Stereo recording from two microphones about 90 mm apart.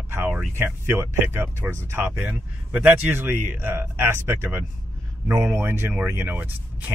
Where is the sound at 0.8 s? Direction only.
25° right (ahead or behind).